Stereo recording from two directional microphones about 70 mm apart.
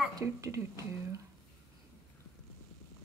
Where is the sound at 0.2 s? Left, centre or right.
Right.